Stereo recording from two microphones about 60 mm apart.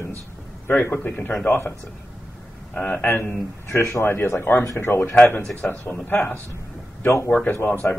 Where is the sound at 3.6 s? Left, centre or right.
Left.